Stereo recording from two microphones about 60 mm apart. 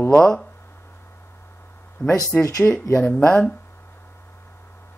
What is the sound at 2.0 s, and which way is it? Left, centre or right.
Speech, left.